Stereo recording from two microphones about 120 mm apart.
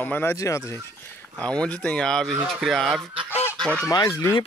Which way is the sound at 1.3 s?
10° left (ahead or behind).